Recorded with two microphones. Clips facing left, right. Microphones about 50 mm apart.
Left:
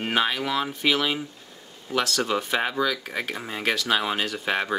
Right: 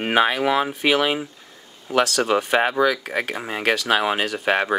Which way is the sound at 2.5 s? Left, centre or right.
Right.